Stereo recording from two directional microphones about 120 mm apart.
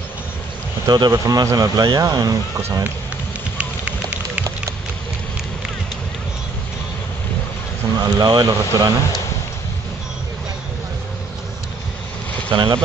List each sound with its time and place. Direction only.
0.8 s speech: 35° right (ahead or behind)
3.5 s rain on surface: 10° right (ahead or behind)
8.0 s speech: 35° right (ahead or behind)
12.4 s speech: 40° right (ahead or behind)